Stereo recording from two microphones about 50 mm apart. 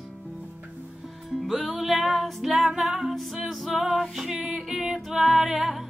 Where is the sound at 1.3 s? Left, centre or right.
Centre.